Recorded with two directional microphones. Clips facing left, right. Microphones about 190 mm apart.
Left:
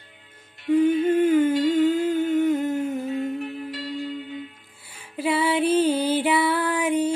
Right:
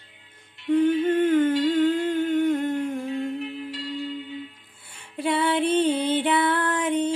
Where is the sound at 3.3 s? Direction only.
45° left (ahead or behind).